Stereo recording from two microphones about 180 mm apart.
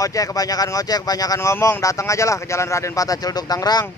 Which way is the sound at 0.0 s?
20° left (ahead or behind).